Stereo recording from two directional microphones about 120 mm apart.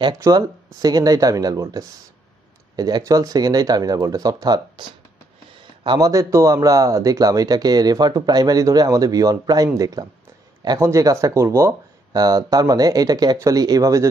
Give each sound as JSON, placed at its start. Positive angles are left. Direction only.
{"t": 0.2, "sound": "a man's voice", "side_deg": -30}
{"t": 5.9, "sound": "a man's voice", "side_deg": -30}